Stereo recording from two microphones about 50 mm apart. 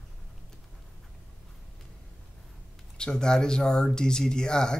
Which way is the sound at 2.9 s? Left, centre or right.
Centre.